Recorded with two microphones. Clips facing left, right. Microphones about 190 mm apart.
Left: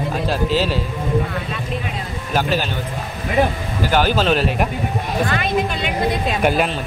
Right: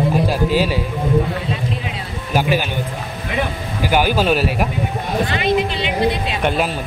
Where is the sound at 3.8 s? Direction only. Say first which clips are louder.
Right 1 dB; 10° right (ahead or behind).